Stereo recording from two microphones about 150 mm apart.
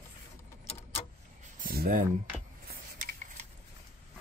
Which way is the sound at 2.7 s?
85° right.